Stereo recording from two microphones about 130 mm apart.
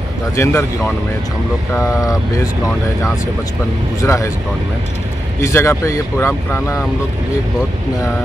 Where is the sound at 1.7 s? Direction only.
25° left (ahead or behind).